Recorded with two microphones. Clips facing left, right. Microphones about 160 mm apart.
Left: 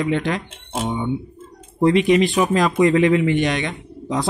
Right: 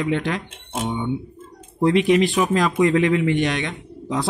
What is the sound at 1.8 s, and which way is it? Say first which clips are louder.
A man's voice: left 1 dB; centre (ahead or behind).